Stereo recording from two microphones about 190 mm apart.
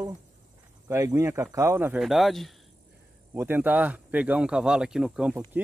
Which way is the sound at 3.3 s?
10° right (ahead or behind).